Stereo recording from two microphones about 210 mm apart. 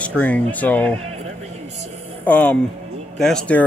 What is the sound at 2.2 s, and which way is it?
A man's voice, 5° left (ahead or behind).